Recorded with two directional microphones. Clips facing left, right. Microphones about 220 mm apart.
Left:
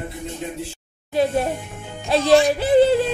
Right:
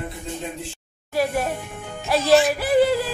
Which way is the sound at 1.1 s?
25° left (ahead or behind).